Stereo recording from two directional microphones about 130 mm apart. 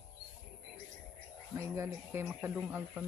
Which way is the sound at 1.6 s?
20° right (ahead or behind).